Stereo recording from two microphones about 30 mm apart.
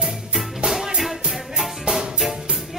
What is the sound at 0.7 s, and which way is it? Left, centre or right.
Music, centre.